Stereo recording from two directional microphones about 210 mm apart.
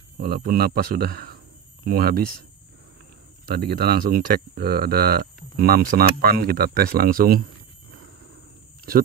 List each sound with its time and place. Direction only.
0.2 s speech: 45° right (ahead or behind)
3.5 s speech: 50° right (ahead or behind)